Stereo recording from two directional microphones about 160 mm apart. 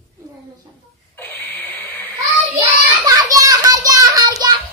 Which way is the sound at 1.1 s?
10° left (ahead or behind).